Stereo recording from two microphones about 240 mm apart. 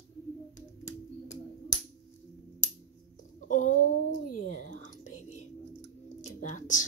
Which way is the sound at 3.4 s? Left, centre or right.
Left.